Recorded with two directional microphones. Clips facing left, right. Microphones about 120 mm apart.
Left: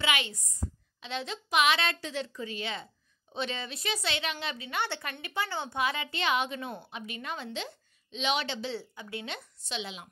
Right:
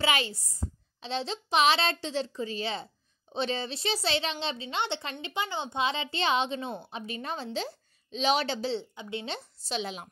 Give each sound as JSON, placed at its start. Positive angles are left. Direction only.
{"t": 0.0, "sound": "a child's voice", "side_deg": -35}
{"t": 8.7, "sound": "a child's voice", "side_deg": -25}